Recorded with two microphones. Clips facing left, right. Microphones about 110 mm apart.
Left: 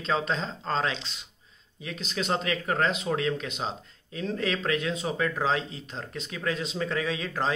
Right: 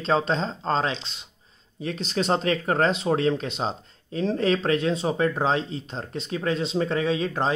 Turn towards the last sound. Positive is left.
turn(degrees=-25)  # may be behind; listen again after turning